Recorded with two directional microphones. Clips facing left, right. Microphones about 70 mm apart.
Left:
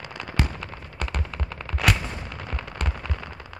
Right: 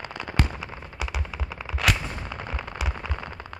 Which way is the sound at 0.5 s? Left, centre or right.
Centre.